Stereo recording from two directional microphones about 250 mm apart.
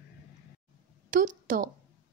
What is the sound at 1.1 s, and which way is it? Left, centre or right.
Speech, right.